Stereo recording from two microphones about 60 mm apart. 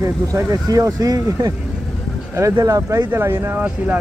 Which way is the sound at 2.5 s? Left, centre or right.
Right.